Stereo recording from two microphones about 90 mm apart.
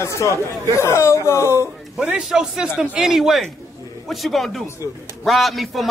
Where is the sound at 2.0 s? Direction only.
10° right (ahead or behind).